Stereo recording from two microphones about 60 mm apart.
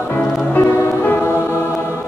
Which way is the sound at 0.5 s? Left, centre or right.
Left.